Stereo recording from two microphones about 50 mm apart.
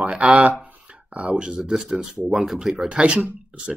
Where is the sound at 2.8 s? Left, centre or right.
Centre.